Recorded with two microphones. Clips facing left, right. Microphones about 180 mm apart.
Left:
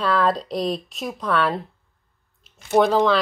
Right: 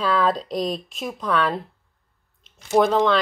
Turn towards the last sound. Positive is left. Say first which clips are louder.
# left 1 dB
turn(degrees=0)  # may be behind; listen again after turning